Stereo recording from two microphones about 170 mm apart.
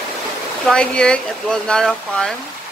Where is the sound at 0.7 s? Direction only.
5° left (ahead or behind).